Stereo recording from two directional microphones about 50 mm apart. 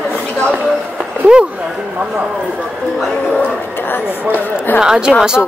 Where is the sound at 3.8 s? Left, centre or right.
Left.